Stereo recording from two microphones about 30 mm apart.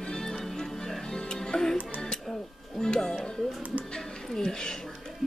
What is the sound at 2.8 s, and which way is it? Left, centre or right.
Music, centre.